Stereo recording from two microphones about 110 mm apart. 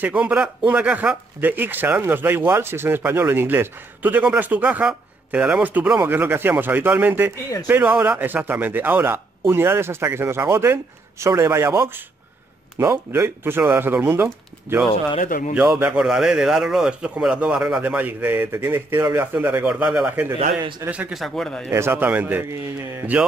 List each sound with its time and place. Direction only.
0.0 s speech: 10° right (ahead or behind)
21.2 s speech: 5° left (ahead or behind)
21.6 s speech: 25° right (ahead or behind)